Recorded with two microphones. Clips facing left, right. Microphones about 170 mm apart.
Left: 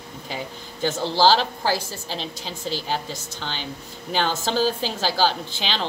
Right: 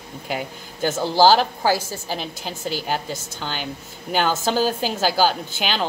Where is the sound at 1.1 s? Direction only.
50° right (ahead or behind).